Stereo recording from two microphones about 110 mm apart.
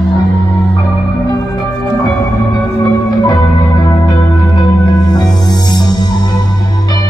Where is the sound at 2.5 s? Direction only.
35° left (ahead or behind).